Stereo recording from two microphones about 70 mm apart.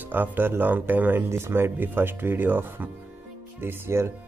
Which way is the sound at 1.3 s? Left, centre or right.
Right.